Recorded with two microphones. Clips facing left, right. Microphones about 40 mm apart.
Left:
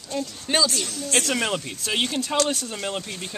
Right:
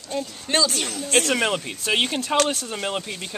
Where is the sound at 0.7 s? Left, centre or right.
Right.